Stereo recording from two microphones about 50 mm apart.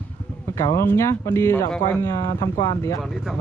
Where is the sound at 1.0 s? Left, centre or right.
Left.